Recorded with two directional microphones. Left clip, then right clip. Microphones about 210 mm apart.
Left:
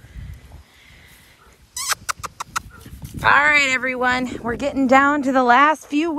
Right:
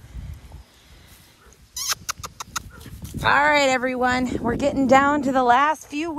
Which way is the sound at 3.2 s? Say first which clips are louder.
Left 3 dB; 20° right (ahead or behind).